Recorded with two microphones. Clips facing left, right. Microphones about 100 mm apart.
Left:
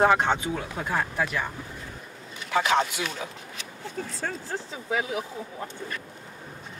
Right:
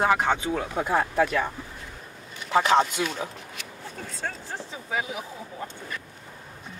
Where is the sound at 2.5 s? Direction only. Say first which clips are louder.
Right 3 dB; 40° right (ahead or behind).